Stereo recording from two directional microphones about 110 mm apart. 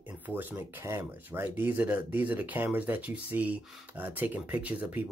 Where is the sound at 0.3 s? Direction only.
20° right (ahead or behind).